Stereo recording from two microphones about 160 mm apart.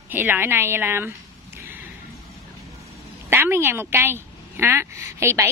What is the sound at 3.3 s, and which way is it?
A woman's voice, 15° right (ahead or behind).